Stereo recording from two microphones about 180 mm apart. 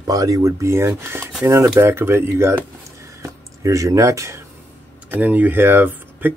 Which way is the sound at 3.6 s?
15° right (ahead or behind).